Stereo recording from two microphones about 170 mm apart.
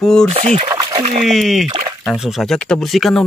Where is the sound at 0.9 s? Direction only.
45° right (ahead or behind).